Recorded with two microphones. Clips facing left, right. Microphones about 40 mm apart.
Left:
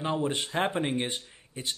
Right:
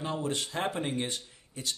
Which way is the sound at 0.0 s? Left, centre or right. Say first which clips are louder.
Left 3 dB; left.